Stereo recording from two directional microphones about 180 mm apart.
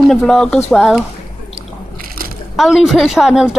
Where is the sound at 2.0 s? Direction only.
55° right (ahead or behind).